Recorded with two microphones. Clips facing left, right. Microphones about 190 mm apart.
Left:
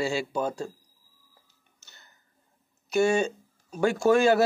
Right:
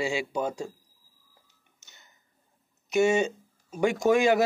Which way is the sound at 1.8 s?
15° right (ahead or behind).